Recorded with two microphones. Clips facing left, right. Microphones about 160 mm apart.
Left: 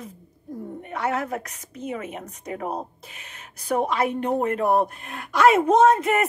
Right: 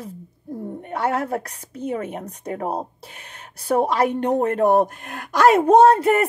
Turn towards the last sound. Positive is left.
turn(degrees=-35)  # may be behind; listen again after turning